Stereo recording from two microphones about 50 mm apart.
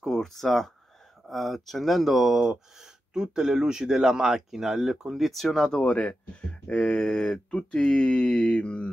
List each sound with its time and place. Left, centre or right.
0.0 s speech: centre
2.4 s speech: centre
5.3 s speech: centre
5.8 s a sound: left